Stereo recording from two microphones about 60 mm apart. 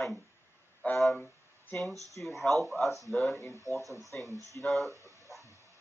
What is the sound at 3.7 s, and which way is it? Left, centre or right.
Speech, right.